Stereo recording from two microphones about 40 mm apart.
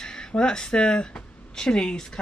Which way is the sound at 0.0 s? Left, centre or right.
Centre.